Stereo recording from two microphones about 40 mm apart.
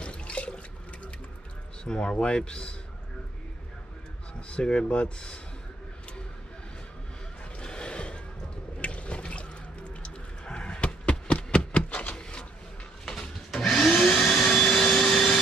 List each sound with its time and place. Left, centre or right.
0.0 s water: left
1.9 s speech: left
4.5 s speech: left
7.5 s gasp: left
8.7 s a sound: left
9.2 s water: left
10.0 s a sound: left
12.2 s a sound: left
13.5 s vacuum cleaner: centre